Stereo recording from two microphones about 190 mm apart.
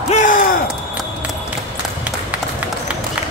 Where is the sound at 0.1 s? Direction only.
45° left (ahead or behind).